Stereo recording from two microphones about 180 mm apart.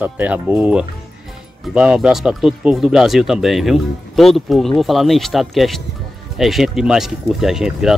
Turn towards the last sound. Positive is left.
turn(degrees=0)  # may be behind; listen again after turning